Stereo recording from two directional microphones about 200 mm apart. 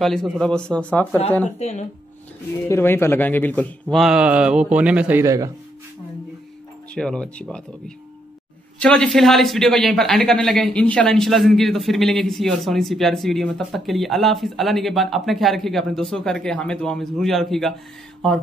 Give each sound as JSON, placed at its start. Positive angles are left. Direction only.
{"t": 0.0, "sound": "a man's voice", "side_deg": 0}
{"t": 1.6, "sound": "speech", "side_deg": 35}
{"t": 2.7, "sound": "speech", "side_deg": 10}
{"t": 3.9, "sound": "a man's voice", "side_deg": -5}
{"t": 6.9, "sound": "a man's voice", "side_deg": 5}
{"t": 8.7, "sound": "a man's voice", "side_deg": 5}